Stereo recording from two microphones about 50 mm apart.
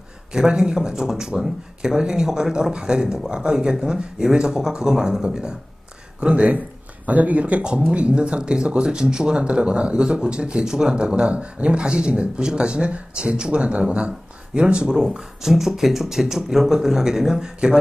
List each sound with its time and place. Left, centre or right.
0.3 s speech: centre